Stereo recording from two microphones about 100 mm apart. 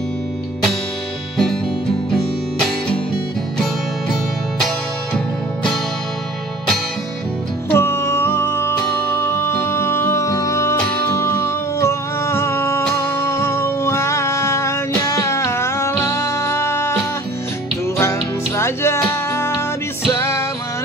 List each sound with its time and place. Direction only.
1.3 s music: 5° left (ahead or behind)
5.1 s music: 5° left (ahead or behind)
7.7 s music: 25° left (ahead or behind)
18.6 s music: 25° left (ahead or behind)